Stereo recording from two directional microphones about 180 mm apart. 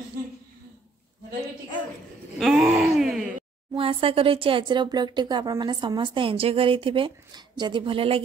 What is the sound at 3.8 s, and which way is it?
Speech, 30° right (ahead or behind).